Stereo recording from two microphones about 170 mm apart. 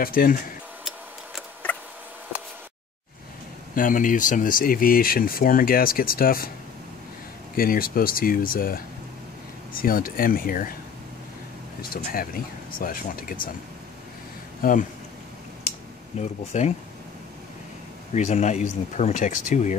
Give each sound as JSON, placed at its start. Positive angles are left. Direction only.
{"t": 0.0, "sound": "speech", "side_deg": 60}
{"t": 1.7, "sound": "a sound", "side_deg": 10}
{"t": 3.7, "sound": "speech", "side_deg": 50}
{"t": 7.5, "sound": "speech", "side_deg": 60}
{"t": 11.8, "sound": "speech", "side_deg": 60}
{"t": 14.6, "sound": "speech", "side_deg": 50}
{"t": 16.2, "sound": "speech", "side_deg": 40}
{"t": 18.1, "sound": "speech", "side_deg": 45}